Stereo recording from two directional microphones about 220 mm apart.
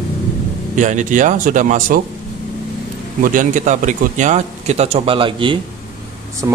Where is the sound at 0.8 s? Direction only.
35° right (ahead or behind).